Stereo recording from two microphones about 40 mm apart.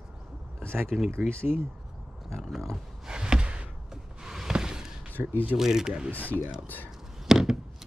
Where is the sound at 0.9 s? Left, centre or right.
Right.